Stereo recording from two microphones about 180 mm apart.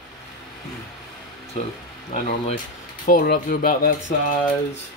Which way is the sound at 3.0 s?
50° left (ahead or behind).